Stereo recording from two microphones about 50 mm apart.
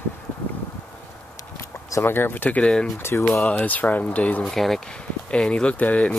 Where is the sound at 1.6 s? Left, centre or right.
Left.